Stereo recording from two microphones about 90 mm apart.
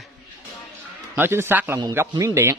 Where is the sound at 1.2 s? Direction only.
25° right (ahead or behind).